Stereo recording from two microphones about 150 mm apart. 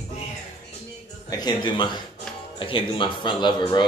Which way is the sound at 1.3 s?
30° left (ahead or behind).